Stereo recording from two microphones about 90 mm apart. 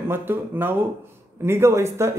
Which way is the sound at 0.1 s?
25° right (ahead or behind).